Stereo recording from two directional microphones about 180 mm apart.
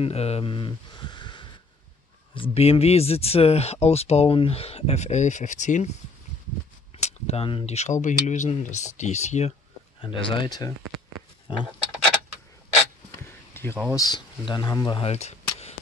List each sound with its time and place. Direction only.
0.0 s speech: 35° left (ahead or behind)
7.0 s speech: 35° left (ahead or behind)
10.0 s speech: 25° left (ahead or behind)
11.5 s a sound: 30° left (ahead or behind)
13.5 s a sound: 15° left (ahead or behind)
13.9 s speech: 25° left (ahead or behind)